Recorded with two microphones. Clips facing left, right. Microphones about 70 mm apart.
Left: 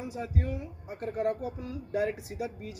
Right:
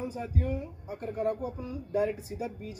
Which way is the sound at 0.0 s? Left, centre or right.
Left.